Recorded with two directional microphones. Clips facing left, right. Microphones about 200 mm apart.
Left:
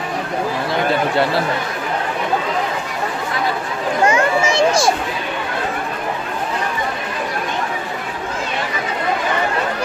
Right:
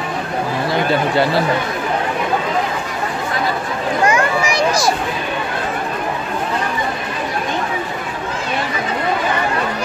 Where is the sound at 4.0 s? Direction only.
25° left (ahead or behind).